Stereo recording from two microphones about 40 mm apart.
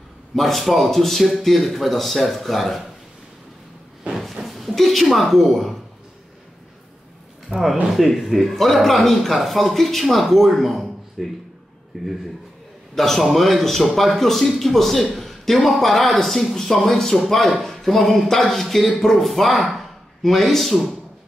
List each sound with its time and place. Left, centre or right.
0.4 s speech: centre
4.1 s a sound: centre
4.7 s speech: centre
7.5 s speech: right
7.9 s speech: centre